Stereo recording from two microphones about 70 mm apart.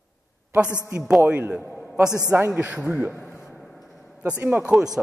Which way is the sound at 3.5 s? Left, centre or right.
Centre.